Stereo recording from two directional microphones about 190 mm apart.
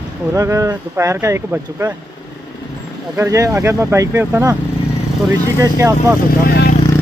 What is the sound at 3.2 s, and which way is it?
Speech, 15° right (ahead or behind).